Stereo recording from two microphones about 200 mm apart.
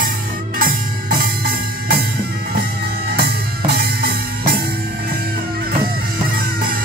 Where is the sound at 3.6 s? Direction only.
50° right (ahead or behind).